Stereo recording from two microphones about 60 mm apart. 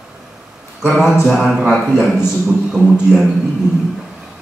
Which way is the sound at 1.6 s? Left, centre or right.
Centre.